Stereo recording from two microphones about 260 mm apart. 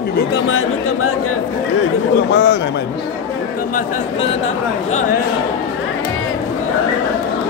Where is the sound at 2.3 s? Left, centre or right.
Left.